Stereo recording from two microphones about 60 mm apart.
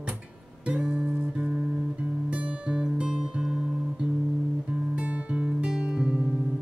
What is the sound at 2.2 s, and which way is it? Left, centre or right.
Music, right.